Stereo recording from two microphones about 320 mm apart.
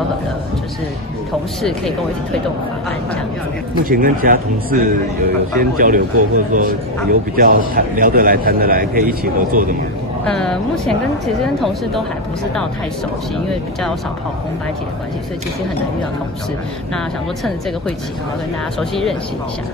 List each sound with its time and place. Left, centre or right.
1.6 s a woman's voice: centre
3.8 s speech: right
10.2 s a woman's voice: centre
13.5 s a woman's voice: centre
18.8 s a woman's voice: centre